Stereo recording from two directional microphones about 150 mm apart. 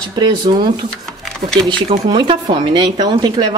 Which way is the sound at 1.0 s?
5° left (ahead or behind).